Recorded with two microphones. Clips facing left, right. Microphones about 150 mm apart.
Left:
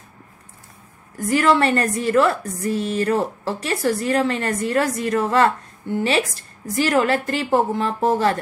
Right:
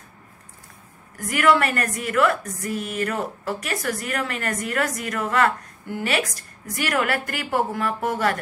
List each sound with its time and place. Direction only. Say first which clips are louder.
1.1 s a woman's voice: left 2 dB; 30° left (ahead or behind)